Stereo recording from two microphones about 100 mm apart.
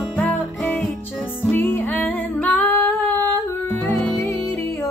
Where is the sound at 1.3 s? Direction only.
20° left (ahead or behind).